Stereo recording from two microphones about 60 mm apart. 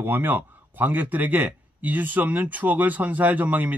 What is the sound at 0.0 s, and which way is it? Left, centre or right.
Speech, right.